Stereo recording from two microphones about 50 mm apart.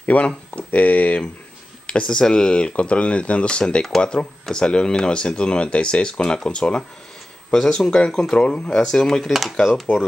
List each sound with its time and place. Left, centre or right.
0.0 s speech: left
1.9 s speech: centre
8.6 s speech: centre
9.3 s speech: centre